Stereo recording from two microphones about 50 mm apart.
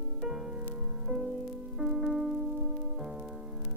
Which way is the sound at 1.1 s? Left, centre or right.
Centre.